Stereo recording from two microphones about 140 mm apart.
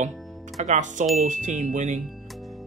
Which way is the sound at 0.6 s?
60° right (ahead or behind).